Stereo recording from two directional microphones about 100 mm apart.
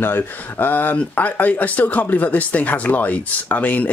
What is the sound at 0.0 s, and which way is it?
Speech, 20° left (ahead or behind).